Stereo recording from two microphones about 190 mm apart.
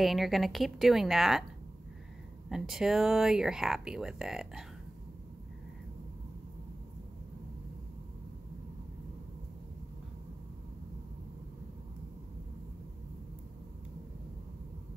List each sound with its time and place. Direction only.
0.0 s speech: centre (ahead or behind)
2.5 s speech: centre (ahead or behind)